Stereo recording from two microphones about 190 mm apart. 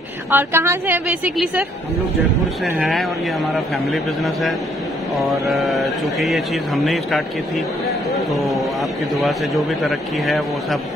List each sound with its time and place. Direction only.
0.3 s a woman's voice: 10° right (ahead or behind)